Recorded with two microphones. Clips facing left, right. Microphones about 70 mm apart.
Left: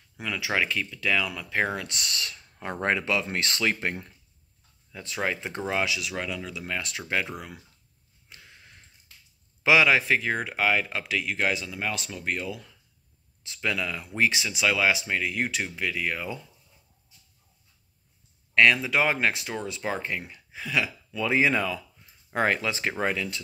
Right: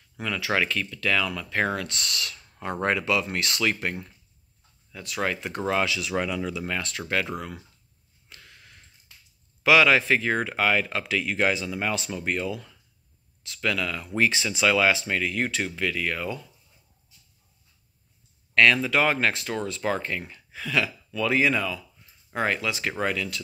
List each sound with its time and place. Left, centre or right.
0.2 s speech: centre
6.1 s speech: centre
6.9 s speech: centre
8.3 s a sound: centre
9.6 s speech: centre
13.4 s speech: centre
18.5 s speech: centre